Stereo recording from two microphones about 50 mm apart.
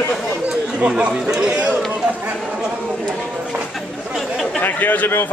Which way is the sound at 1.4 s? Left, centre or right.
Right.